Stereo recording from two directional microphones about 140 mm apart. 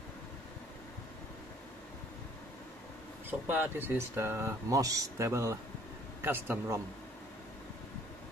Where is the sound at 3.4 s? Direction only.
15° right (ahead or behind).